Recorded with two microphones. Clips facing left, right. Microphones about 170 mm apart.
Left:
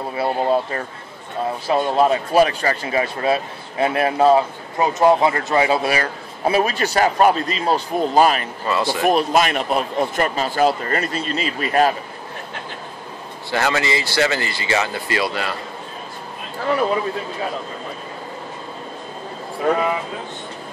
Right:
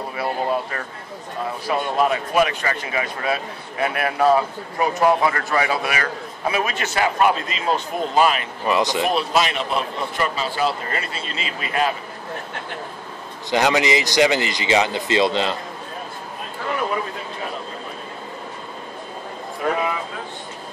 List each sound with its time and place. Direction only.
0.1 s speech: 30° left (ahead or behind)
8.6 s speech: 15° right (ahead or behind)
9.1 s a man's voice: 50° left (ahead or behind)
13.5 s speech: 15° right (ahead or behind)